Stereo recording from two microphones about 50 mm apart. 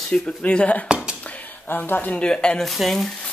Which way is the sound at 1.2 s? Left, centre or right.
Left.